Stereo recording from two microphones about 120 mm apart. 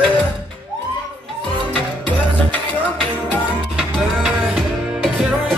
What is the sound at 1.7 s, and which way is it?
Music, 10° left (ahead or behind).